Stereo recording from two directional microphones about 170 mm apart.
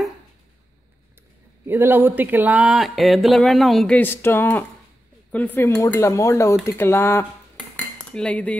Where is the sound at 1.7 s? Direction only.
10° right (ahead or behind).